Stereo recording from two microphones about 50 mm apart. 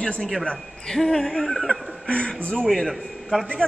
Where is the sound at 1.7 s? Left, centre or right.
Centre.